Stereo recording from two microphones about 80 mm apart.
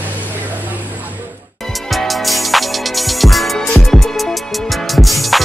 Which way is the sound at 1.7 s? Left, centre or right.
Centre.